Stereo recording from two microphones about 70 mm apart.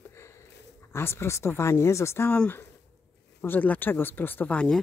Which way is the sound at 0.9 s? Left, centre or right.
Left.